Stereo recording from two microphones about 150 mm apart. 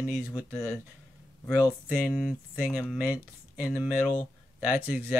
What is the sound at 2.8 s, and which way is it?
Speech, 10° right (ahead or behind).